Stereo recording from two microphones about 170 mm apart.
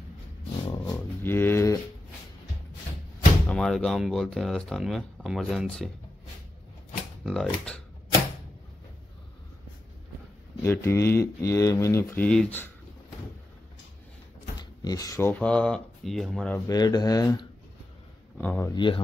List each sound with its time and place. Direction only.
0.6 s a sound: 25° left (ahead or behind)
0.9 s a sound: 15° left (ahead or behind)
3.4 s speech: 5° left (ahead or behind)
7.2 s speech: 5° left (ahead or behind)
10.6 s speech: 15° left (ahead or behind)
14.6 s speech: 20° left (ahead or behind); by 16.6 s 5° left (ahead or behind)
16.6 s speech: 25° left (ahead or behind)
18.4 s speech: 10° left (ahead or behind)
18.7 s speech: 30° left (ahead or behind)